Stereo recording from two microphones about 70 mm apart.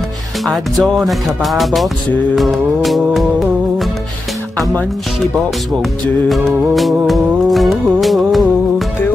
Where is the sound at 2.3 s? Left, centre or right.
Centre.